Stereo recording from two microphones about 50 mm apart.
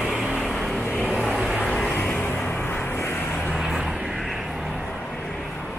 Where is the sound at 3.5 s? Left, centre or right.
Centre.